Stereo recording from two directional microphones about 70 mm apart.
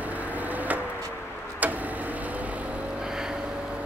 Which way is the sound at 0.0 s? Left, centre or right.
Right.